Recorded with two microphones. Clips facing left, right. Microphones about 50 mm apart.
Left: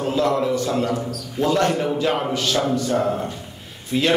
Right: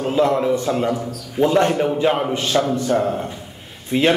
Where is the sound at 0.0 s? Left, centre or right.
Right.